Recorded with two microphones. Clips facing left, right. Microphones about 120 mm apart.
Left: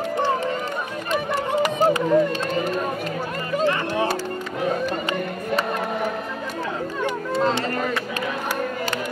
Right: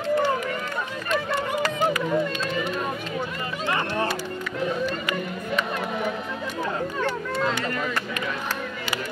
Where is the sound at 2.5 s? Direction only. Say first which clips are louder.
Left 4 dB; 40° left (ahead or behind).